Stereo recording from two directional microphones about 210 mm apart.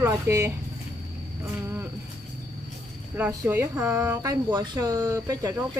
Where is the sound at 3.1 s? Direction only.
10° right (ahead or behind).